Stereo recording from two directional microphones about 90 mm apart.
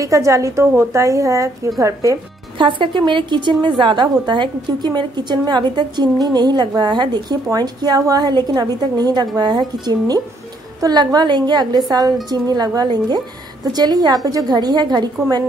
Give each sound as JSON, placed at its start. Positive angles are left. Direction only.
{"t": 0.0, "sound": "a woman's voice", "side_deg": -40}
{"t": 2.6, "sound": "a woman's voice", "side_deg": -65}